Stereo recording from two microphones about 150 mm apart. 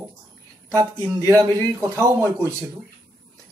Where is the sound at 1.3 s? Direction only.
25° right (ahead or behind).